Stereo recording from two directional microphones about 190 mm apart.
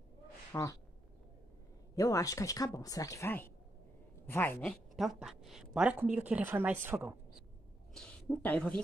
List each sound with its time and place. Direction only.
0.5 s speech: 15° left (ahead or behind)
2.0 s a woman's voice: 20° left (ahead or behind); by 7.2 s 10° right (ahead or behind)
7.9 s a woman's voice: 5° left (ahead or behind)